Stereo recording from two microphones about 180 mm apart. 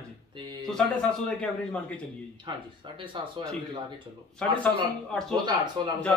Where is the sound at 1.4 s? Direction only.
5° left (ahead or behind).